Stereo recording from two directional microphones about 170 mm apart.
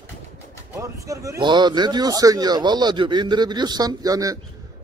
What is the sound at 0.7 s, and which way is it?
A man's voice, 15° right (ahead or behind).